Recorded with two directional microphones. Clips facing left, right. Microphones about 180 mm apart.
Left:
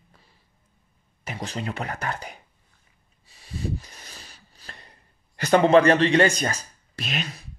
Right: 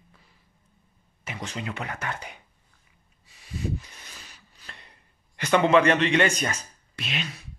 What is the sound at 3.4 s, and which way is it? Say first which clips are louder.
Rub: left 1 dB; 35° left (ahead or behind).